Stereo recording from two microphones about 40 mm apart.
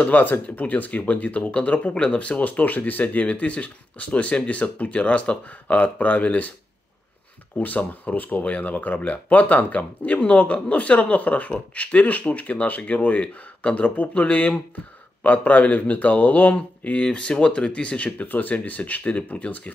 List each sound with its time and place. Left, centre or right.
0.1 s speech: left
7.5 s speech: left
15.2 s speech: left
17.0 s speech: left
18.2 s speech: left